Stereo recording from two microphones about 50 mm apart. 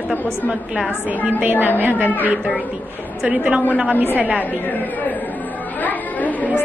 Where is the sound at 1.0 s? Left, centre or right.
Right.